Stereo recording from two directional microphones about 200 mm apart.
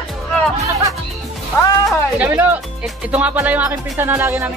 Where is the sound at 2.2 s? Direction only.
5° right (ahead or behind).